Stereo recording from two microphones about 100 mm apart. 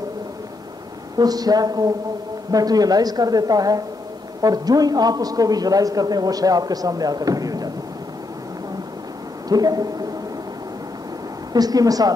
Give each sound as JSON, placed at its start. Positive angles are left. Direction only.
{"t": 1.1, "sound": "a man's voice", "side_deg": -40}
{"t": 9.5, "sound": "a man's voice", "side_deg": -40}
{"t": 11.5, "sound": "a man's voice", "side_deg": -40}